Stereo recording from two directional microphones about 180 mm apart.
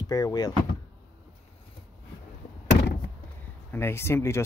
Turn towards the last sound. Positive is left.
turn(degrees=15)  # may be behind; listen again after turning